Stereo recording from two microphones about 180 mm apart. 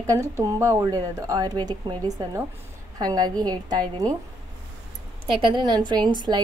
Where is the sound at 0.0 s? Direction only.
15° right (ahead or behind).